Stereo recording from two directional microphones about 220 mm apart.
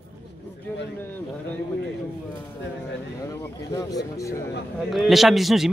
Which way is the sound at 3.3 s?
15° left (ahead or behind).